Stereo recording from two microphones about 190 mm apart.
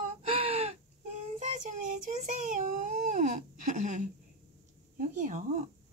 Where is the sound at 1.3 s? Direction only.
40° right (ahead or behind).